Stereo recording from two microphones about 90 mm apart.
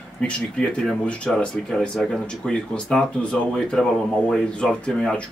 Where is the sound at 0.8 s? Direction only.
5° left (ahead or behind).